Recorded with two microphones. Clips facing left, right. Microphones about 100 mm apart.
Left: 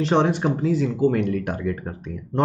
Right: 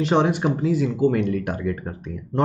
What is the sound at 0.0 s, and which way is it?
Speech, 10° right (ahead or behind).